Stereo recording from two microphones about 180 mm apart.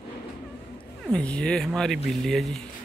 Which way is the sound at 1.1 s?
5° left (ahead or behind).